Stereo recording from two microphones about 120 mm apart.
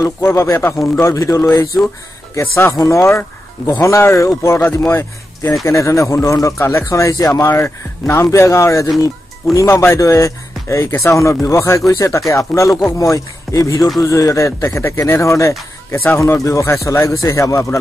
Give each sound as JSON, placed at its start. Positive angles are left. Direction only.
{"t": 0.0, "sound": "speech", "side_deg": 20}